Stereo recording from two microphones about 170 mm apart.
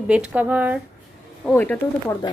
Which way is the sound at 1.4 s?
10° left (ahead or behind).